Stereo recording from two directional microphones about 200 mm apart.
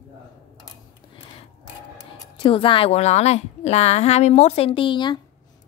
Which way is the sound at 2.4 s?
25° left (ahead or behind).